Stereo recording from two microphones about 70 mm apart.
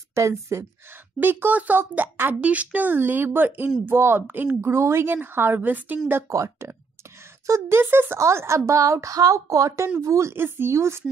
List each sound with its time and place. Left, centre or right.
0.1 s a woman's voice: right
1.2 s a child's voice: right
6.2 s a woman's voice: right
8.2 s a woman's voice: right
10.3 s speech: right